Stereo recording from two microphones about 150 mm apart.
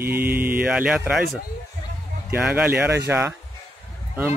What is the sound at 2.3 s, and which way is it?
Speech, 5° right (ahead or behind).